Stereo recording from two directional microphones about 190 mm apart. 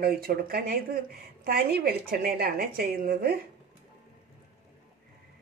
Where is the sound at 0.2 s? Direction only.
55° right (ahead or behind).